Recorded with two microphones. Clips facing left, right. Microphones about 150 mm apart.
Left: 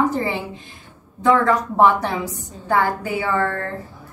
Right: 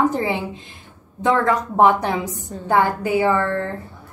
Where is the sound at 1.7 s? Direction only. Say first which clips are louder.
Right 2 dB; 20° right (ahead or behind).